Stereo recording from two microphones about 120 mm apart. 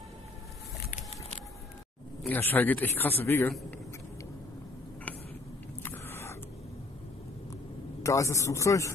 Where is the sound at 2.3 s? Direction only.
15° left (ahead or behind).